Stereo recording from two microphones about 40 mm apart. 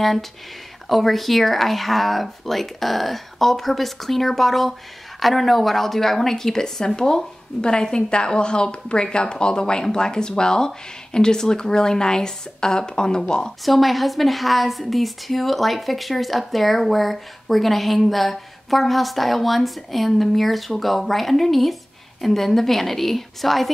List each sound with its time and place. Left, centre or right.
0.8 s a woman's voice: centre
13.7 s a woman's voice: centre